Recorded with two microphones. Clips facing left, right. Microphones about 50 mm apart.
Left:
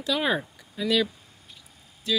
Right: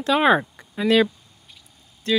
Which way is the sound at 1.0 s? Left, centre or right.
Centre.